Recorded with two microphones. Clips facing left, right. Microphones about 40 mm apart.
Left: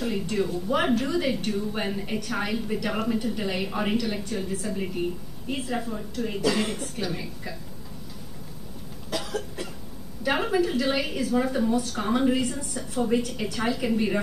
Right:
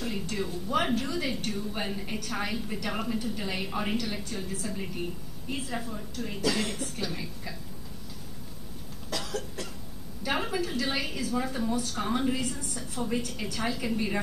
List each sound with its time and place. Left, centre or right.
0.0 s a woman's voice: centre
0.7 s a woman's voice: centre
9.1 s cough: centre
10.2 s a woman's voice: centre